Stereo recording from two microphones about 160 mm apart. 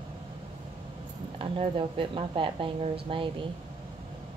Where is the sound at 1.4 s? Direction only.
35° right (ahead or behind).